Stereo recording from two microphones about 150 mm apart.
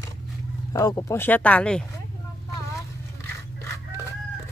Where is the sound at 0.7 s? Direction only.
25° left (ahead or behind); by 1.8 s 5° left (ahead or behind).